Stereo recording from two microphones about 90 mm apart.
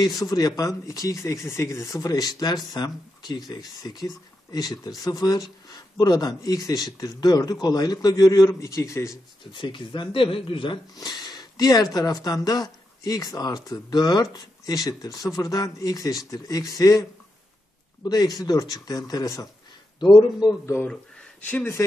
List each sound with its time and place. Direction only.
0.2 s speech: 40° left (ahead or behind)
9.5 s speech: 65° left (ahead or behind)
11.0 s speech: 55° left (ahead or behind)
18.0 s speech: 45° left (ahead or behind)
20.8 s a sound: 10° left (ahead or behind)
21.5 s speech: 25° left (ahead or behind)